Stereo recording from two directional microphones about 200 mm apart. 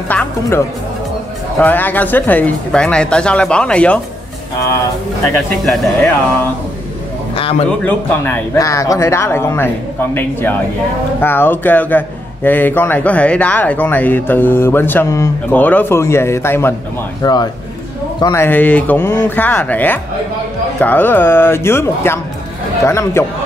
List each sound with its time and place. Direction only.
0.1 s speech: 10° left (ahead or behind)
1.6 s speech: 10° left (ahead or behind)
5.3 s speech: 10° left (ahead or behind)
7.3 s a man's voice: 30° left (ahead or behind)
7.8 s speech: 10° left (ahead or behind)
11.1 s a man's voice: 10° left (ahead or behind)